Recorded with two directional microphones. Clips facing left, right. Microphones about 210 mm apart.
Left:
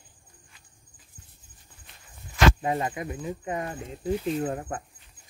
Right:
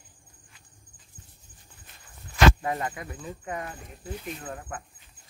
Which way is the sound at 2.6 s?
25° left (ahead or behind).